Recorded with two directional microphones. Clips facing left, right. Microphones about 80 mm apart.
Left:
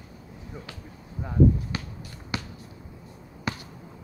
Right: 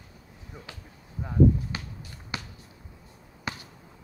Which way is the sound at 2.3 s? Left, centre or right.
Right.